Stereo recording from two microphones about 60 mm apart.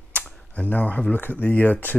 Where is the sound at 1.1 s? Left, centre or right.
Left.